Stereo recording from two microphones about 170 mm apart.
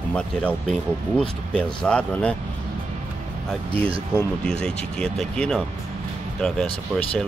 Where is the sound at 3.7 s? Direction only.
35° right (ahead or behind).